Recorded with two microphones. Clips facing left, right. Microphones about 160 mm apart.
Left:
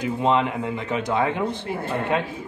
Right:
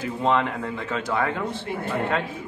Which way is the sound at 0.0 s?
20° left (ahead or behind).